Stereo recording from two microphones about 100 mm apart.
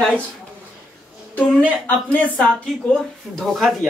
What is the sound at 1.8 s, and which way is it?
Speech, 15° left (ahead or behind).